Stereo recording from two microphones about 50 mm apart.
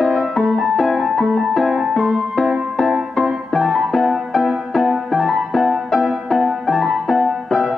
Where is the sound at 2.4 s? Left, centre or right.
Centre.